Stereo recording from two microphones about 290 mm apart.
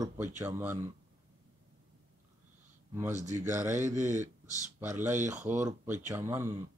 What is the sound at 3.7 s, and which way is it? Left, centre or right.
Speech, right.